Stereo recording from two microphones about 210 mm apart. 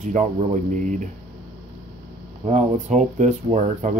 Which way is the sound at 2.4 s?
35° right (ahead or behind).